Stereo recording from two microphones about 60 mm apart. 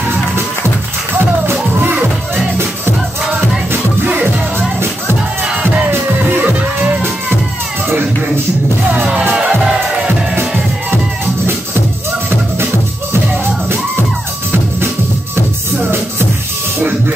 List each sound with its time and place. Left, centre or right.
1.1 s music: right
3.7 s music: right